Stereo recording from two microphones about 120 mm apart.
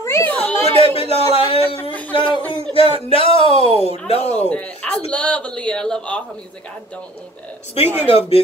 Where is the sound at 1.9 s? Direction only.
10° left (ahead or behind).